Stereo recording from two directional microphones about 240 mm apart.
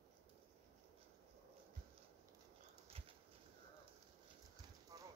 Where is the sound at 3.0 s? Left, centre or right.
Right.